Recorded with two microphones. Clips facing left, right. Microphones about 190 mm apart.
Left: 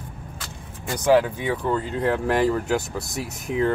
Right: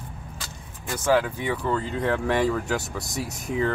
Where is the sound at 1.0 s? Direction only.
10° left (ahead or behind).